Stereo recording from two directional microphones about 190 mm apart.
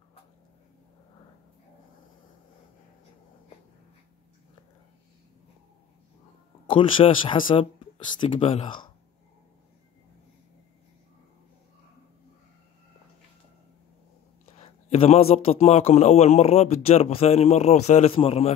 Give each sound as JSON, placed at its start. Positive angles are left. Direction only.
{"t": 6.7, "sound": "speech", "side_deg": 25}
{"t": 14.6, "sound": "a man's voice", "side_deg": 35}